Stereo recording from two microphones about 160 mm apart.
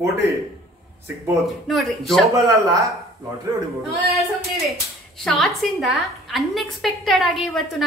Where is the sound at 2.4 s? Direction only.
20° right (ahead or behind).